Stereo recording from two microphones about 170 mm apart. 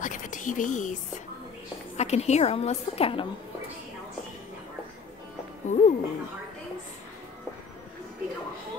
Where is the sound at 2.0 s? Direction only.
40° left (ahead or behind).